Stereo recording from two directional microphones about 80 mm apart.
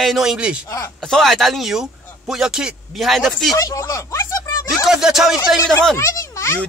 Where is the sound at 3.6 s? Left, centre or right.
Left.